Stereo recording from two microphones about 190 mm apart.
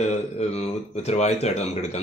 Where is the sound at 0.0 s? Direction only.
35° left (ahead or behind).